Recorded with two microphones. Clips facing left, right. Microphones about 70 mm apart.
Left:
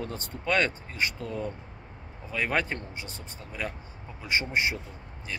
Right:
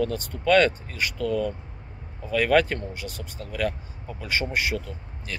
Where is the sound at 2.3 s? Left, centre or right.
Left.